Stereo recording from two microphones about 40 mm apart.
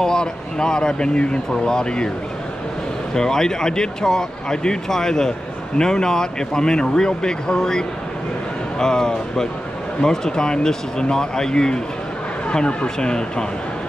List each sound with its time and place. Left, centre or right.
0.0 s speech: centre
3.2 s speech: centre